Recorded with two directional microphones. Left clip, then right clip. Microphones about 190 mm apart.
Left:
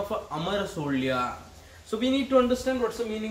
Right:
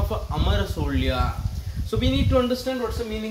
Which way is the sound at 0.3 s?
10° right (ahead or behind).